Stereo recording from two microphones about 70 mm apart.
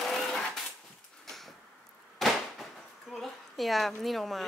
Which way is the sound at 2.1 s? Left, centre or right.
Centre.